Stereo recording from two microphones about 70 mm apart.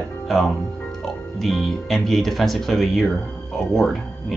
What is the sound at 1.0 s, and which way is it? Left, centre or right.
Speech, centre.